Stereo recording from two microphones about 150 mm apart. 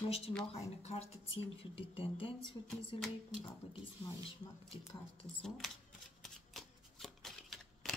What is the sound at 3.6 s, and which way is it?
Speech, 40° left (ahead or behind).